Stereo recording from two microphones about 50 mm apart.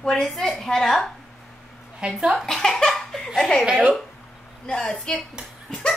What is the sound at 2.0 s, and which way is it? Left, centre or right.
Speech, centre.